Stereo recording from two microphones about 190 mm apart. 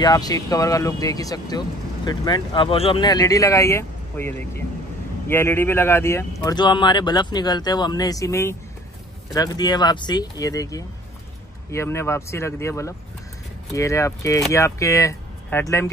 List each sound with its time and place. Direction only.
0.0 s speech: 20° left (ahead or behind)